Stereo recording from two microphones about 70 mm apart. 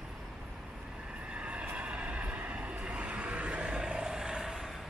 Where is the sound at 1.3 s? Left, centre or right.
Centre.